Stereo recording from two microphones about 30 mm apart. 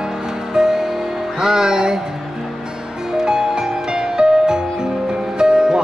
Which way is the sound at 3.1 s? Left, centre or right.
Right.